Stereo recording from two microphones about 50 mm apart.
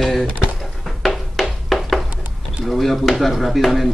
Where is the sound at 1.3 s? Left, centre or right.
Centre.